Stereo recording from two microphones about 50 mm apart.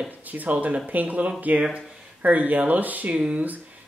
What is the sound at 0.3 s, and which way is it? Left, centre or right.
Speech, right.